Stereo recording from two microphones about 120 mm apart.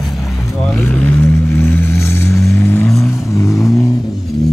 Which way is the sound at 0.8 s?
15° left (ahead or behind).